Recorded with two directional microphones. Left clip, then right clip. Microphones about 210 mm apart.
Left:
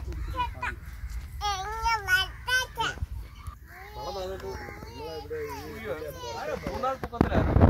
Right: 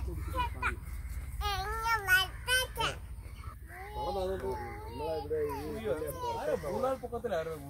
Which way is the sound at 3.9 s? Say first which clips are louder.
Right 1 dB; 40° right (ahead or behind).